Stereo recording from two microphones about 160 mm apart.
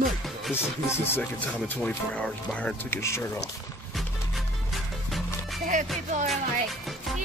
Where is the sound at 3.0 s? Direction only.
15° left (ahead or behind).